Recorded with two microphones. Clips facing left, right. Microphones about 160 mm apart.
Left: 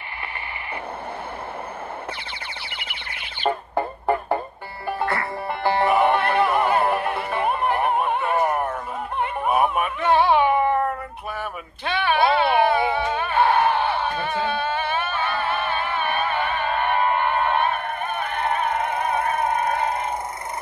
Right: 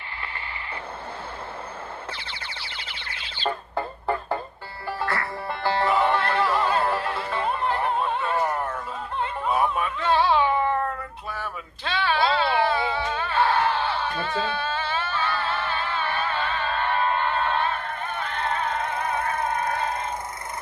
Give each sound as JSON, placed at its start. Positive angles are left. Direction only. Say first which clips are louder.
{"t": 2.7, "sound": "music", "louder": "left 2 dB", "side_deg": 15}
{"t": 8.2, "sound": "opera", "louder": "left 3 dB", "side_deg": 15}
{"t": 9.8, "sound": "a sound", "louder": "left 3 dB", "side_deg": 15}